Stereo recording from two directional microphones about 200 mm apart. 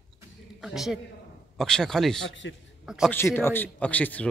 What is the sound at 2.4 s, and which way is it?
Speech, 65° left (ahead or behind).